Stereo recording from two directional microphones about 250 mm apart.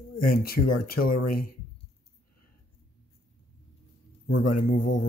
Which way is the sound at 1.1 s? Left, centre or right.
Left.